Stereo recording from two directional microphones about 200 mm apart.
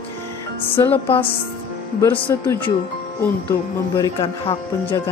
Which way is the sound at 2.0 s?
10° left (ahead or behind).